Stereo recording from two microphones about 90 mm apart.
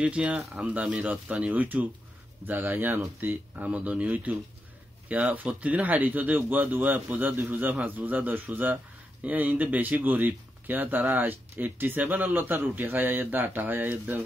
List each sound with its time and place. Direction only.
0.0 s speech: 15° right (ahead or behind)